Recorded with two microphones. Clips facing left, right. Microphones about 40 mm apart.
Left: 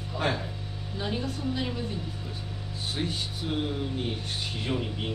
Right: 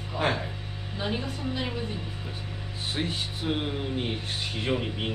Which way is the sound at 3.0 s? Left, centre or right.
Right.